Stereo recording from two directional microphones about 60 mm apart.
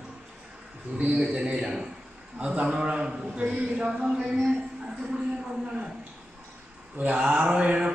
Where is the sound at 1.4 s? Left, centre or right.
Centre.